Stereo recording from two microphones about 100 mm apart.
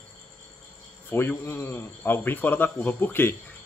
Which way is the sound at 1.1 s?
25° left (ahead or behind).